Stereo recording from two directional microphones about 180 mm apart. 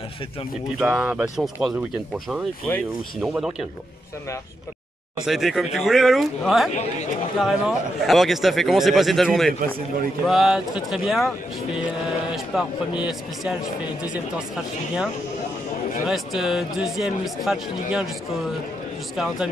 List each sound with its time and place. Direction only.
0.7 s speech: 5° right (ahead or behind)
3.2 s speech: 5° right (ahead or behind)
5.2 s speech: centre (ahead or behind)
6.7 s speech: 40° left (ahead or behind)
7.3 s speech: centre (ahead or behind)
9.5 s speech: 50° right (ahead or behind)
10.2 s speech: centre (ahead or behind)
16.1 s speech: centre (ahead or behind)
19.1 s speech: centre (ahead or behind)